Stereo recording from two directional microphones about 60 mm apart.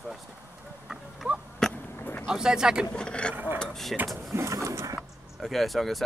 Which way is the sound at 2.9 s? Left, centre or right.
Centre.